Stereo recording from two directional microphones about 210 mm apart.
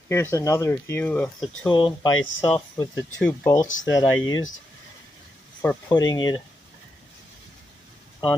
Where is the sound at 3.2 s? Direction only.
15° left (ahead or behind).